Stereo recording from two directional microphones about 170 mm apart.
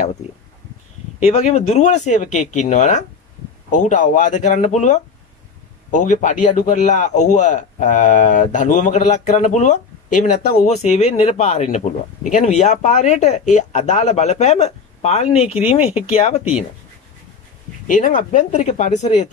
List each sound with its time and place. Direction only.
1.2 s a man's voice: 40° left (ahead or behind)
17.9 s a man's voice: 50° left (ahead or behind)